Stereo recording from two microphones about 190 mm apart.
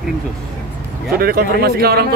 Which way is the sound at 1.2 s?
50° right (ahead or behind).